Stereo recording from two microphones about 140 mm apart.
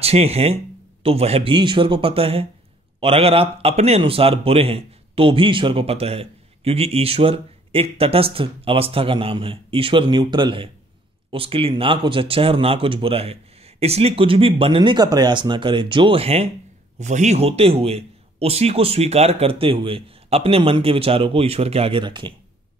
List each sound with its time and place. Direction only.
0.0 s a man's voice: 45° right (ahead or behind)
17.0 s a man's voice: 55° right (ahead or behind); by 22.3 s 35° right (ahead or behind)